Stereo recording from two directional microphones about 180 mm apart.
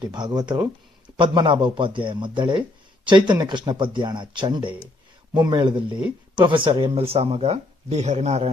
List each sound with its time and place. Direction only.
0.0 s speech: 25° right (ahead or behind)